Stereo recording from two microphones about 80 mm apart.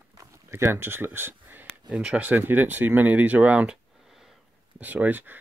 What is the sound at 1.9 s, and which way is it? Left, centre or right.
Speech, centre.